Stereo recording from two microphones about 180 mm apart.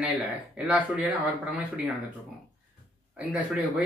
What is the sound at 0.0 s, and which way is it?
Speech, 10° right (ahead or behind).